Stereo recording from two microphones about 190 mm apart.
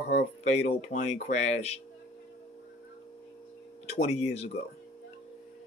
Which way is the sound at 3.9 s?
35° left (ahead or behind).